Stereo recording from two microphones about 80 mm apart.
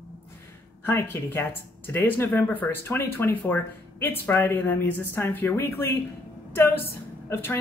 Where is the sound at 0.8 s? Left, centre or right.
Left.